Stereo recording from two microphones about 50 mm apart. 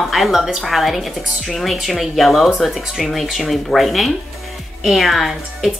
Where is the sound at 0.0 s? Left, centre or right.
Centre.